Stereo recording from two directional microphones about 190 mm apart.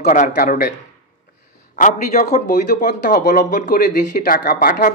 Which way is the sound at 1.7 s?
40° left (ahead or behind).